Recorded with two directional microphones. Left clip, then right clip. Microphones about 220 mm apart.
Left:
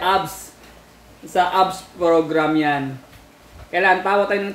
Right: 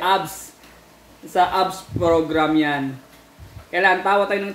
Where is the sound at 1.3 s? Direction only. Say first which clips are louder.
Left 1 dB; centre (ahead or behind).